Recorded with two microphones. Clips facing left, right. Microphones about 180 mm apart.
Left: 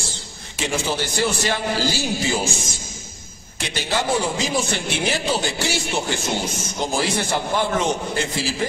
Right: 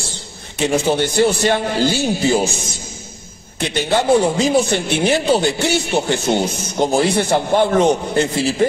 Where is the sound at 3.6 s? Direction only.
60° right (ahead or behind).